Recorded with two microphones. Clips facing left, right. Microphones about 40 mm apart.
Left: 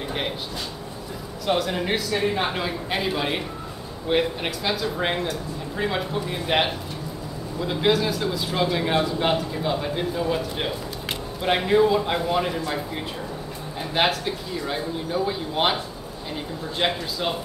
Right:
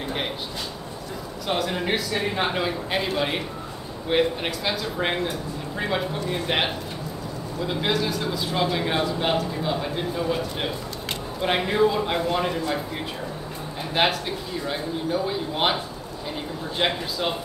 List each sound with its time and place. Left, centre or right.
1.5 s a man's voice: centre
13.9 s a man's voice: centre